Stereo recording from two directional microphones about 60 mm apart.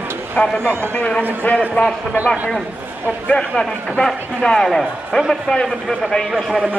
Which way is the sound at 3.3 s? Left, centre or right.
Centre.